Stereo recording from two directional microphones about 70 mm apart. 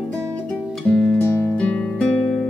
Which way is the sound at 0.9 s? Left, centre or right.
Centre.